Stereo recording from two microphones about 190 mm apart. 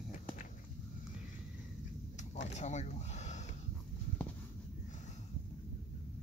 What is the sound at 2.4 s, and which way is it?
Speech, 35° left (ahead or behind).